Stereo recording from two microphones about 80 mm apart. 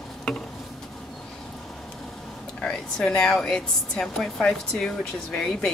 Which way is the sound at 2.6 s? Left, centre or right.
Centre.